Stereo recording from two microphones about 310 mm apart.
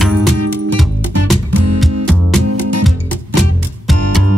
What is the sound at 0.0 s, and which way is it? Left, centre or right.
Music, centre.